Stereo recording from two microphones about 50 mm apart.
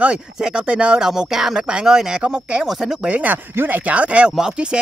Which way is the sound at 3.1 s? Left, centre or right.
Right.